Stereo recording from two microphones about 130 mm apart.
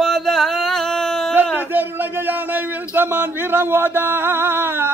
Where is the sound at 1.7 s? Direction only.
15° right (ahead or behind).